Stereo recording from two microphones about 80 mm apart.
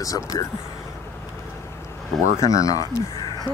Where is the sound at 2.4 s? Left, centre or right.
Left.